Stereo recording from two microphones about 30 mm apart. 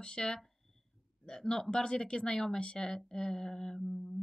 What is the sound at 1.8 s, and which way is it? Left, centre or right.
Speech, left.